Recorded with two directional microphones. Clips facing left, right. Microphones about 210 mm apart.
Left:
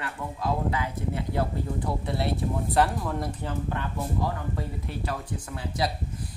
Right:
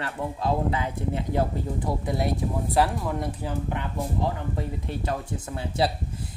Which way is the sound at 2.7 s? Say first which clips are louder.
Right 1 dB; centre (ahead or behind).